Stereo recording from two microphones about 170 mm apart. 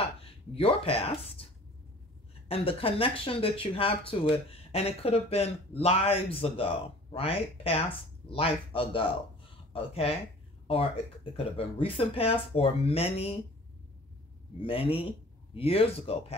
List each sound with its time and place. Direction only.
0.2 s speech: 35° left (ahead or behind)
11.3 s speech: 35° left (ahead or behind)
14.6 s speech: 30° left (ahead or behind)